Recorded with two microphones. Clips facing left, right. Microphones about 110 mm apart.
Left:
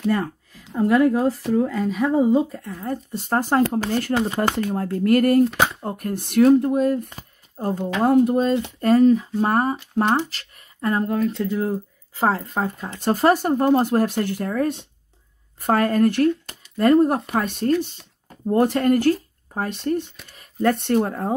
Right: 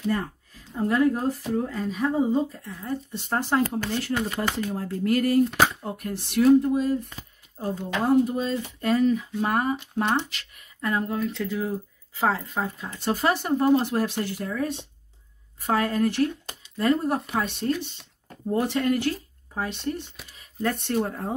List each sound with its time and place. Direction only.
0.1 s speech: 80° left; by 2.7 s 65° left (ahead or behind)
2.7 s speech: 45° left (ahead or behind)
4.1 s speech: 30° left (ahead or behind)
4.4 s speech: 55° left (ahead or behind)
8.8 s speech: 40° left (ahead or behind)
20.3 s speech: 60° left (ahead or behind)